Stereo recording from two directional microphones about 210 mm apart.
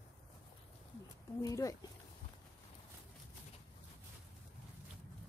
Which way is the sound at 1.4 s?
15° left (ahead or behind).